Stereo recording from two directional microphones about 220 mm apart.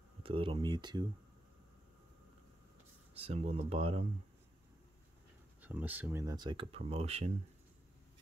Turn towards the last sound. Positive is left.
turn(degrees=-30)  # may be behind; listen again after turning